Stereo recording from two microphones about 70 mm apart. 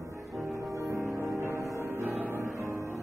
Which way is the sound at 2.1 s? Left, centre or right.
Right.